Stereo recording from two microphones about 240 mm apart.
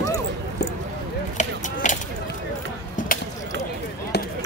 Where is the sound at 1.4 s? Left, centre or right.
Left.